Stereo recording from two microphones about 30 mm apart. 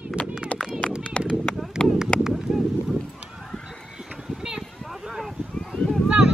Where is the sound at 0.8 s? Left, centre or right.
Left.